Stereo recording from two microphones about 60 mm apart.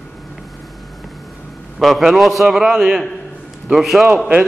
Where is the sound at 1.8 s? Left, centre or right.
Centre.